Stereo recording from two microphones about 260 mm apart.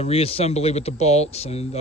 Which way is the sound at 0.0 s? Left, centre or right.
Left.